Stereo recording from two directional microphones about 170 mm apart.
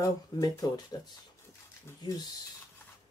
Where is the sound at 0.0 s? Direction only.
20° left (ahead or behind).